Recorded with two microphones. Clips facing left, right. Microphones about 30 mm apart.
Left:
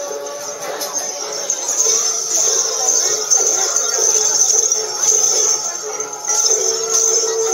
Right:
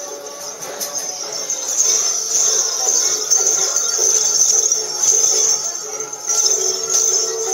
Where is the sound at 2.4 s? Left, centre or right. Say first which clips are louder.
Left 2 dB; centre.